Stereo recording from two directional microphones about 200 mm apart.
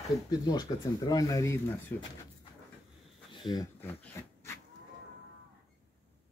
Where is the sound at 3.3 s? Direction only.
20° left (ahead or behind).